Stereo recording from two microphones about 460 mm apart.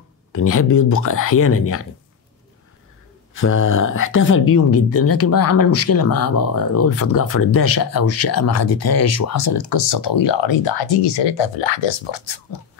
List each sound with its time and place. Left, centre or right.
0.3 s speech: left
3.3 s speech: left